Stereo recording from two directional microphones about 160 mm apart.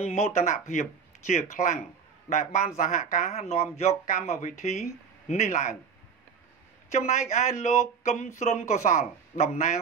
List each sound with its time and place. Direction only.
0.0 s speech: 45° left (ahead or behind)
6.9 s speech: 50° left (ahead or behind)